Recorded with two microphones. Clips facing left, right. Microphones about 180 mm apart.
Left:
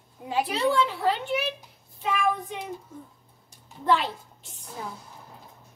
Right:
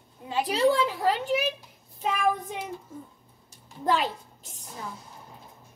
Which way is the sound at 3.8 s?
40° right (ahead or behind).